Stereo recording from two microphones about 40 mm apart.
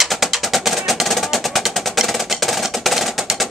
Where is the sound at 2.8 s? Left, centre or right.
Centre.